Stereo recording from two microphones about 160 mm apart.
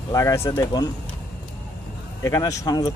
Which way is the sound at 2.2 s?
20° left (ahead or behind).